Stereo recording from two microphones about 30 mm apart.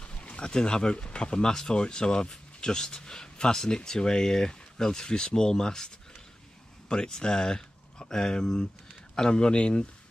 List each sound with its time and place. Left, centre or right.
0.0 s a sound: left
0.5 s speech: left
6.9 s speech: left